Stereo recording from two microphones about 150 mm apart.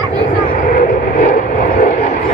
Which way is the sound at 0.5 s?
70° left (ahead or behind).